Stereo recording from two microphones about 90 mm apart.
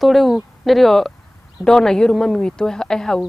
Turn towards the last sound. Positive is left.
turn(degrees=5)  # may be behind; listen again after turning